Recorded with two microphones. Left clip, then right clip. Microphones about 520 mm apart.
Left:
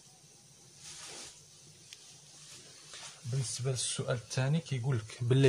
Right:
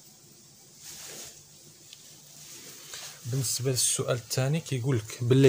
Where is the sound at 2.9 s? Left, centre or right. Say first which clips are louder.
Right 6 dB; left.